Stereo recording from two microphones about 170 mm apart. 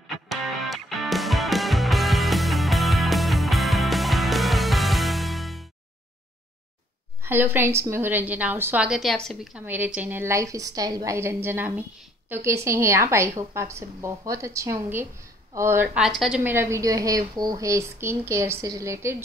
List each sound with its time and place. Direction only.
0.3 s music: centre (ahead or behind)
7.2 s a woman's voice: 10° right (ahead or behind)